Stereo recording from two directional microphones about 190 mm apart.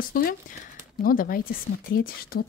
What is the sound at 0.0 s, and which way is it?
Speech, 50° left (ahead or behind).